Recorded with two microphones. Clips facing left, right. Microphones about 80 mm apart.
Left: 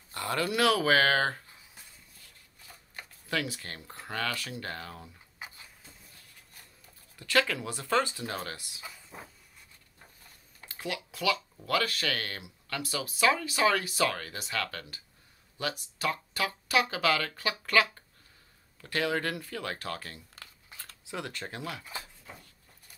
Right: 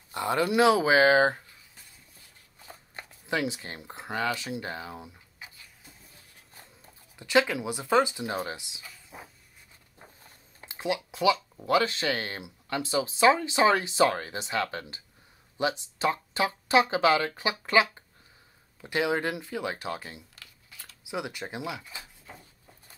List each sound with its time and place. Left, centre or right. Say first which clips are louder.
0.1 s speech: right 5 dB; centre
3.3 s speech: right 4 dB; centre
7.2 s speech: right 4 dB; centre
9.1 s a sound: right 3 dB; centre
10.6 s speech: right 7 dB; right
20.3 s a sound: left 2 dB; left
21.1 s speech: right 4 dB; centre